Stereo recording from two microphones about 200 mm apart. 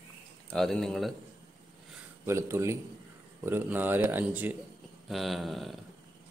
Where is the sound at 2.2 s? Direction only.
15° right (ahead or behind).